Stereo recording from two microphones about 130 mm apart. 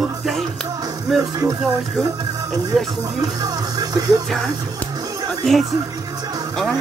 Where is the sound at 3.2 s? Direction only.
30° right (ahead or behind).